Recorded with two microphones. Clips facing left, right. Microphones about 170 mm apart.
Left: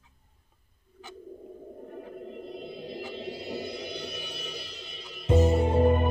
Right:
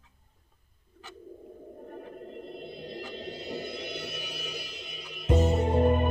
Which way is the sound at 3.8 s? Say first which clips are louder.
Left 1 dB; 5° right (ahead or behind).